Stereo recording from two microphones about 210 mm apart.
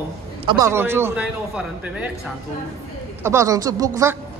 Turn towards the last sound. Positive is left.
turn(degrees=-15)  # may be behind; listen again after turning